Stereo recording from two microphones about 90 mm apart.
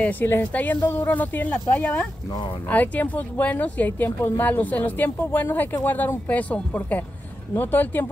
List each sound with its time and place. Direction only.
0.0 s speech: 20° left (ahead or behind)